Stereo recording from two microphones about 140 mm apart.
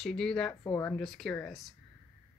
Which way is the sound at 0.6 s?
25° left (ahead or behind).